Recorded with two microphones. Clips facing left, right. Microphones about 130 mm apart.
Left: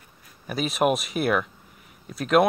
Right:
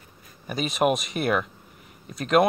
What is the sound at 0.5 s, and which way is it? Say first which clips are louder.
Speech: even; centre (ahead or behind).